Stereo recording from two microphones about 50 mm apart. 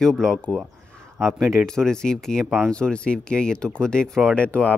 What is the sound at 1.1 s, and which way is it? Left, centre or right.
Speech, centre.